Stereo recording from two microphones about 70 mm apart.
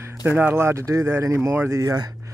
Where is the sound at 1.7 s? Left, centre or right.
Right.